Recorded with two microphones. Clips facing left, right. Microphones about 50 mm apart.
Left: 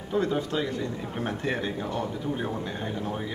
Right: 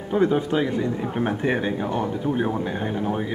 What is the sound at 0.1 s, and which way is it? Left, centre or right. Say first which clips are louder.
Speech: right 6 dB; right.